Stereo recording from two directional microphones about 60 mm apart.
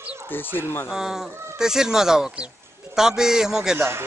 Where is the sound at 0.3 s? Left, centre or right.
Left.